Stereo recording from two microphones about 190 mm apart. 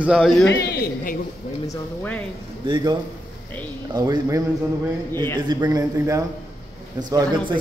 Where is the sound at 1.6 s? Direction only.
10° left (ahead or behind).